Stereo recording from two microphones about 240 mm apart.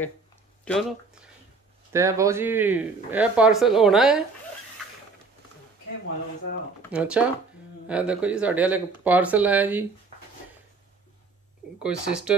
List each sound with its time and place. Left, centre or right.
0.7 s speech: centre
1.9 s speech: centre
6.9 s speech: centre
11.8 s speech: centre